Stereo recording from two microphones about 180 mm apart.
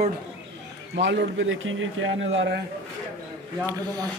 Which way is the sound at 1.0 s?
85° right.